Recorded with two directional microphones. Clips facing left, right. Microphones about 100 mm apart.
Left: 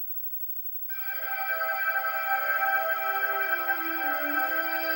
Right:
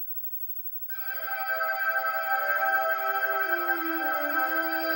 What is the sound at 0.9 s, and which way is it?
Music, 15° right (ahead or behind).